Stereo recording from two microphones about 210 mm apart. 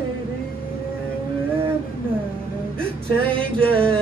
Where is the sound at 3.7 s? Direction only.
25° right (ahead or behind).